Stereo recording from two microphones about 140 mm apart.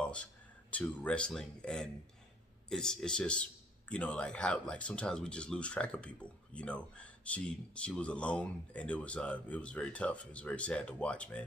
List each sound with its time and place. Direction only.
0.7 s speech: 10° left (ahead or behind)